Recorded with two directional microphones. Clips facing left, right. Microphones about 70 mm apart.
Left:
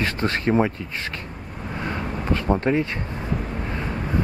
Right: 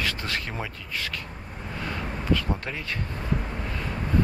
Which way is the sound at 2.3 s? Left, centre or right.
Left.